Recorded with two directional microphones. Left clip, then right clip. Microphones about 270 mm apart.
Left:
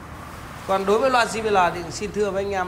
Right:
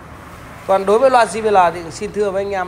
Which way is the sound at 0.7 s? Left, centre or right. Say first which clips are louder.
Right 7 dB; centre.